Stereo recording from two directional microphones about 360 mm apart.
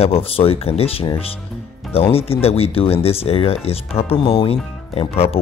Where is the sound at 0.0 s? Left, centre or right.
Centre.